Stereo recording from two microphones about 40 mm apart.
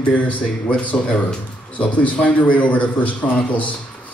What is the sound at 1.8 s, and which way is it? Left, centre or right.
A man's voice, left.